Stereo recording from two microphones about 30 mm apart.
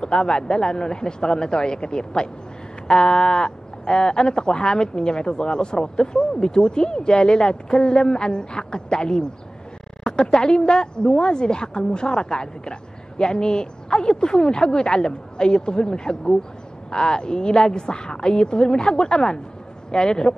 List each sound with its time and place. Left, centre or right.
0.0 s speech: left